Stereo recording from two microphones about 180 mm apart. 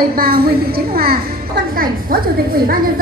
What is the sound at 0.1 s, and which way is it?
A woman's voice, 60° right (ahead or behind).